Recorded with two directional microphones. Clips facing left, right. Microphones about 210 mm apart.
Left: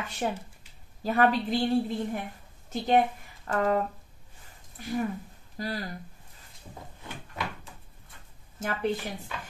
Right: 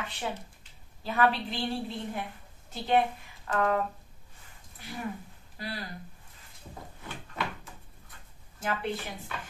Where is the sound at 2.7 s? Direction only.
40° left (ahead or behind).